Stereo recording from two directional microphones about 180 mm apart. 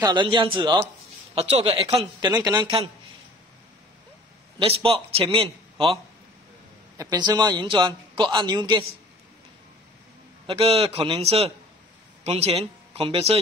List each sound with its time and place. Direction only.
0.0 s a man's voice: 25° right (ahead or behind)
1.8 s a man's voice: 20° right (ahead or behind)
4.6 s a man's voice: 30° right (ahead or behind)
7.0 s a man's voice: 20° right (ahead or behind)
10.4 s a man's voice: 30° right (ahead or behind)